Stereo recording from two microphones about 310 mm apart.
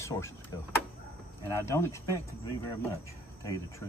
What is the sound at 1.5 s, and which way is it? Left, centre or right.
Speech, centre.